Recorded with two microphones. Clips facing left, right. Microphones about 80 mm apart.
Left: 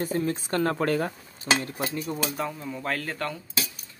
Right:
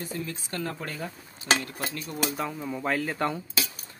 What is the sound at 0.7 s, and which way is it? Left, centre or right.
Speech, left.